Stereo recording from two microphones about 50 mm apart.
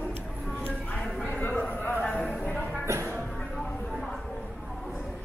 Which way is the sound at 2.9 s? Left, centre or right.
Right.